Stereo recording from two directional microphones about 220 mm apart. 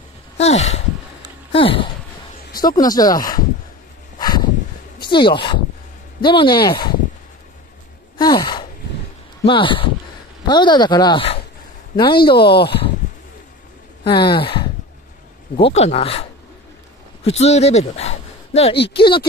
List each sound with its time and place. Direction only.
0.4 s speech: 30° left (ahead or behind)
1.5 s a sound: 25° left (ahead or behind)
2.6 s speech: 15° left (ahead or behind)
4.2 s a sound: 20° left (ahead or behind)
5.0 s speech: 20° left (ahead or behind)
8.2 s gasp: 20° left (ahead or behind)
9.4 s speech: 20° left (ahead or behind)
12.4 s speech: 45° left (ahead or behind)
14.0 s speech: 20° left (ahead or behind)
15.7 s speech: 30° left (ahead or behind)